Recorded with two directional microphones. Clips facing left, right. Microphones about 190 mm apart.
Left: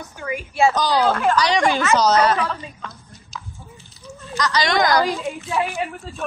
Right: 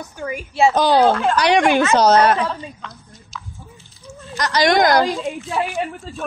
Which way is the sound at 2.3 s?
30° right (ahead or behind).